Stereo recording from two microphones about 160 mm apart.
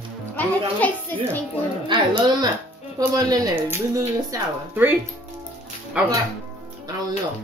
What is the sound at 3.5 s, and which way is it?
Speech, 15° right (ahead or behind).